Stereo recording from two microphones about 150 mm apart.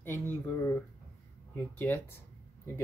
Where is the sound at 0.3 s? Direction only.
15° left (ahead or behind).